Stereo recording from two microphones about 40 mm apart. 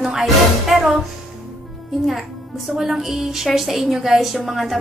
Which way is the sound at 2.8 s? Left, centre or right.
Centre.